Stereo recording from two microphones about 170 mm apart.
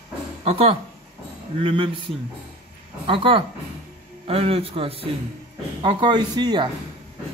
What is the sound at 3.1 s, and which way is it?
A man's voice, 30° right (ahead or behind).